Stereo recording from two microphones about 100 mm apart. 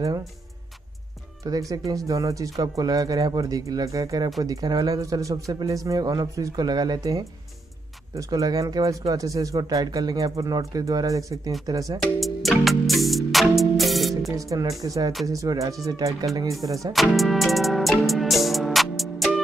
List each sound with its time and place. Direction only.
1.4 s speech: 35° right (ahead or behind)
12.0 s music: centre (ahead or behind)
14.3 s speech: 35° right (ahead or behind)
16.9 s music: centre (ahead or behind)